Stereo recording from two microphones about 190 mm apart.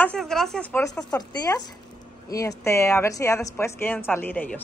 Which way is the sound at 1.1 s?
20° left (ahead or behind).